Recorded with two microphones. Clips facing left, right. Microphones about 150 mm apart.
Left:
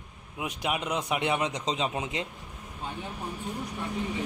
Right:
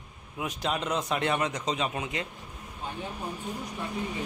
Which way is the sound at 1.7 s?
25° left (ahead or behind).